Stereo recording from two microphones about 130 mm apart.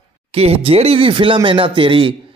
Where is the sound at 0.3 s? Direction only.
50° right (ahead or behind).